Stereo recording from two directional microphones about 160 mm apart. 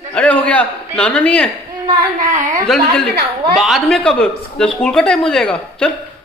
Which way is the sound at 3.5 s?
Centre (ahead or behind).